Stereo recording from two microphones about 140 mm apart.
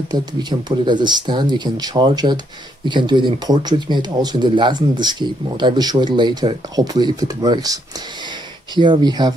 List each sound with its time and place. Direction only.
0.1 s speech: 30° right (ahead or behind)